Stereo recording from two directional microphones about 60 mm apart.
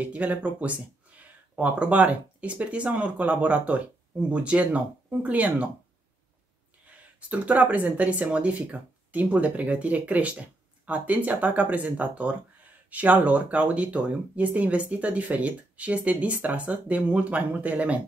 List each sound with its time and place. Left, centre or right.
0.0 s speech: right
7.2 s speech: right